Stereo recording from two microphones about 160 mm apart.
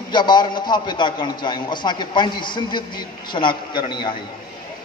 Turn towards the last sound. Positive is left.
turn(degrees=30)  # may be behind; listen again after turning